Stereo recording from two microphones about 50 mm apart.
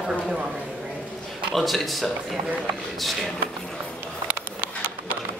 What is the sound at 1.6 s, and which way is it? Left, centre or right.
Speech, centre.